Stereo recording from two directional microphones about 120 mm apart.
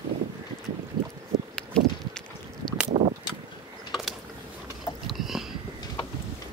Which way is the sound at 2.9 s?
55° right (ahead or behind).